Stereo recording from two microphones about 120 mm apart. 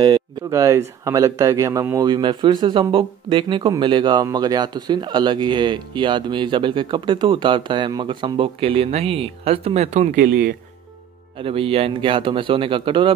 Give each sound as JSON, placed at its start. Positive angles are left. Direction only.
{"t": 0.5, "sound": "speech", "side_deg": -25}
{"t": 11.3, "sound": "speech", "side_deg": -50}